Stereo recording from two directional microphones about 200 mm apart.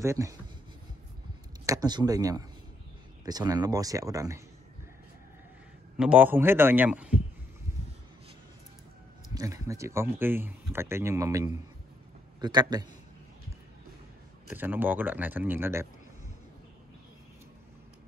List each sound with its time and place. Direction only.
0.0 s speech: 15° right (ahead or behind)
1.7 s speech: 20° right (ahead or behind)
5.9 s speech: 5° right (ahead or behind)
9.3 s speech: 15° right (ahead or behind)
14.5 s speech: 10° right (ahead or behind)